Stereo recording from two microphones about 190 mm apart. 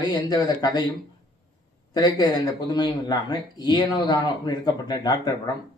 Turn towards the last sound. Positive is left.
turn(degrees=20)  # may be behind; listen again after turning